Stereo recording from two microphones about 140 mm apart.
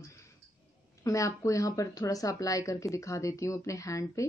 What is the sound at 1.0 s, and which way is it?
Speech, 25° left (ahead or behind).